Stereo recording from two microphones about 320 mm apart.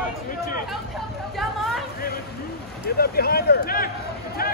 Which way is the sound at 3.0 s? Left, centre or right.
Left.